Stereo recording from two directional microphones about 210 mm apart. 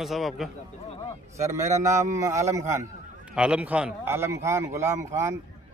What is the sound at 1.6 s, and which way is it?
Speech, 35° right (ahead or behind).